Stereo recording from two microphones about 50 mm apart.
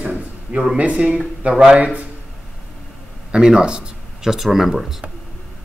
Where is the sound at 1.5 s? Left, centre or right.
Centre.